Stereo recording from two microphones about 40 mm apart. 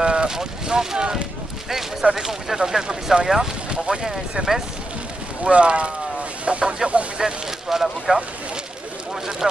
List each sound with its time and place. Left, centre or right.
0.0 s speech: right
1.7 s speech: centre
4.0 s speech: centre
5.4 s speech: right
6.4 s chicken: right
7.2 s speech: centre
9.4 s speech: centre